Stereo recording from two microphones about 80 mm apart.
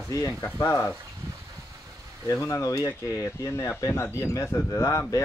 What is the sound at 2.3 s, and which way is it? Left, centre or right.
Speech, left.